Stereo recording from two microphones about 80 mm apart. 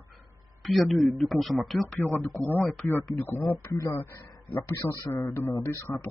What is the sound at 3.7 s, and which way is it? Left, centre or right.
Speech, left.